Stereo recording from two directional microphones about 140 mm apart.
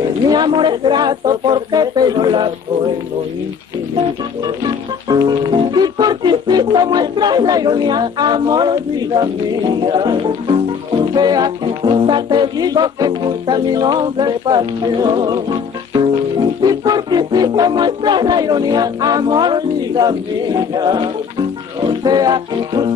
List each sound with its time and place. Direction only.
0.3 s speech: 35° right (ahead or behind)
4.6 s speech: 30° right (ahead or behind)
16.6 s music: 30° right (ahead or behind)